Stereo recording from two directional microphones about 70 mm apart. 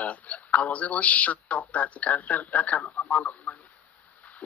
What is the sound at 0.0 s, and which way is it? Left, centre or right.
Speech, left.